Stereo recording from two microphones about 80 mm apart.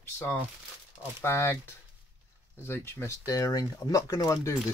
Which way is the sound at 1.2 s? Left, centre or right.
Left.